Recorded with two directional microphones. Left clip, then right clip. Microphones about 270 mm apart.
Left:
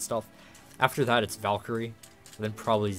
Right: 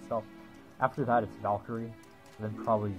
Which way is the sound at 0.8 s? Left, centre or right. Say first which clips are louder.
Left 3 dB; left.